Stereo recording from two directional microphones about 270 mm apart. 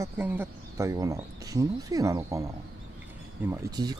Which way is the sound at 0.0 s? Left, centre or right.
Centre.